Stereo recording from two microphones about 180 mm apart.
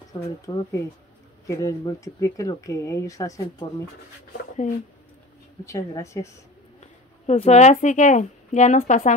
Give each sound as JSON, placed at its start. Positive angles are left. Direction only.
{"t": 0.1, "sound": "speech", "side_deg": 20}
{"t": 5.7, "sound": "speech", "side_deg": 15}
{"t": 6.8, "sound": "a woman's voice", "side_deg": 35}